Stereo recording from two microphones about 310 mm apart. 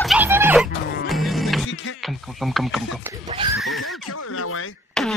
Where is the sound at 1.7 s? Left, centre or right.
Left.